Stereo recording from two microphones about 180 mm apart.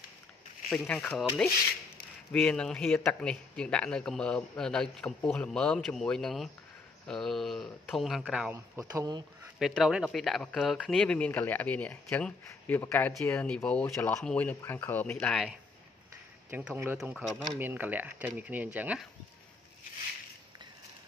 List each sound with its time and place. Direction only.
0.7 s a man's voice: 5° left (ahead or behind)
8.9 s speech: 20° right (ahead or behind)
9.6 s a man's voice: centre (ahead or behind)
16.4 s a man's voice: 10° right (ahead or behind)
17.6 s speech: 10° right (ahead or behind)